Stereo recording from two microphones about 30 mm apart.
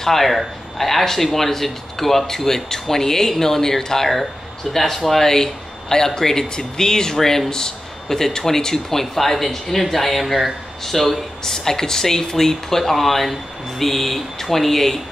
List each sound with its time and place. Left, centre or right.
0.0 s speech: centre
9.1 s speech: centre
11.5 s speech: centre